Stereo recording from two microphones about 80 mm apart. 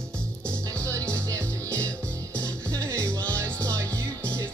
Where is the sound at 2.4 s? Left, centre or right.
Right.